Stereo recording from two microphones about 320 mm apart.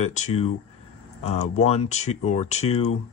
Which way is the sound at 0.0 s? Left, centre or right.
Left.